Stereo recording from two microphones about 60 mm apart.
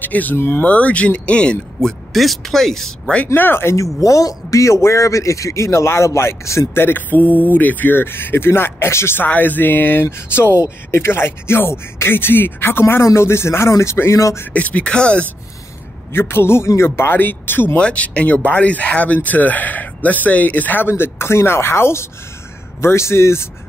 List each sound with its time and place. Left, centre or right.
0.0 s speech: left
2.1 s speech: centre
3.3 s speech: left
3.7 s a man's voice: left
6.7 s speech: left
14.5 s speech: left
16.1 s speech: left
17.7 s speech: centre
20.9 s speech: left